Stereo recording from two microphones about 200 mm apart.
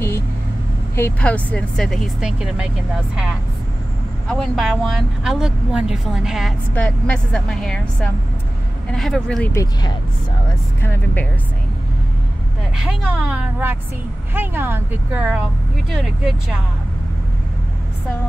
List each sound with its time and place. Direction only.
0.9 s a woman's voice: 10° left (ahead or behind)
4.3 s a woman's voice: centre (ahead or behind)
9.5 s speech: 15° left (ahead or behind)
12.7 s a woman's voice: 5° right (ahead or behind)